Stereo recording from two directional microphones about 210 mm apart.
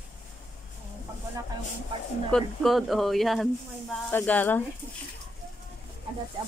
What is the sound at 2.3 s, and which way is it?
Speech, centre (ahead or behind).